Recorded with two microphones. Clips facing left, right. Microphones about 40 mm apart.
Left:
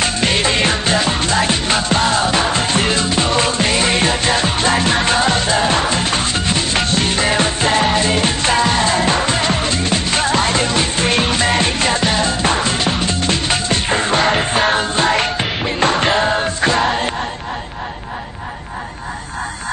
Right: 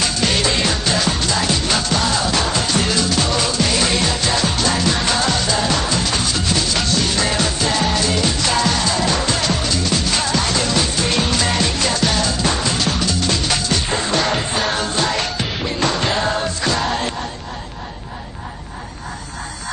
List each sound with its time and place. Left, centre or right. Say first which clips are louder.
0.0 s music: left 2 dB; left